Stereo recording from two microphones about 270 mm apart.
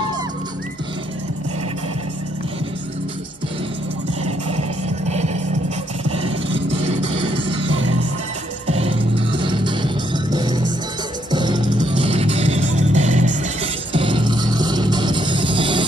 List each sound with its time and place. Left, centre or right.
4.6 s music: right
6.0 s vehicle: right
7.7 s music: right
8.6 s music: right